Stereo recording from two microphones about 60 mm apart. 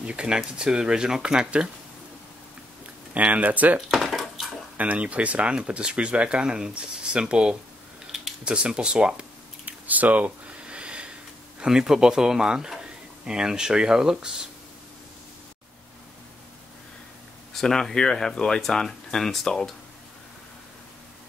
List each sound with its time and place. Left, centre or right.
0.0 s speech: centre
3.2 s speech: right
3.9 s dishes: centre
4.7 s speech: right
9.7 s a sound: right
11.6 s speech: centre
17.6 s speech: centre